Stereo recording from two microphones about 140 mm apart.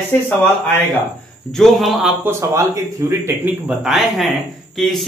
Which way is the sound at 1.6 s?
Centre (ahead or behind).